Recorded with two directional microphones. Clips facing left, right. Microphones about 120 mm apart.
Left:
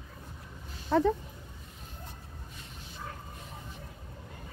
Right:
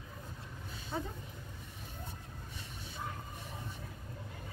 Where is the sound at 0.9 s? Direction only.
75° left (ahead or behind).